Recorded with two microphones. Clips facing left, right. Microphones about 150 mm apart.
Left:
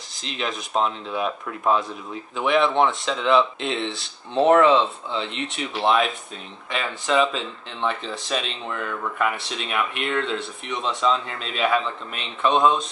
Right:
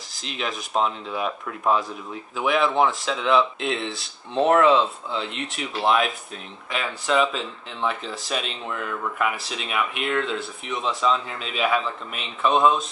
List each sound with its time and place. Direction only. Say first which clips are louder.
0.1 s speech: left 1 dB; centre (ahead or behind)